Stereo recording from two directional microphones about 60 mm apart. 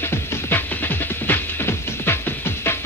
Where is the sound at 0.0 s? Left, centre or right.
Left.